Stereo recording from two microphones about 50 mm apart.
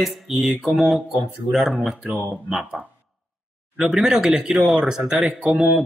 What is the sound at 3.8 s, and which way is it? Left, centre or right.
Speech, centre.